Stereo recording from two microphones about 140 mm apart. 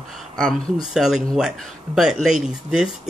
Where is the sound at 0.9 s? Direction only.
5° right (ahead or behind).